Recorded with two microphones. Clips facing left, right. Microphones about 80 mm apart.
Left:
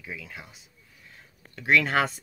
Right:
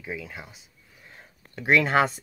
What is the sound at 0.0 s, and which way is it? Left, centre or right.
Speech, centre.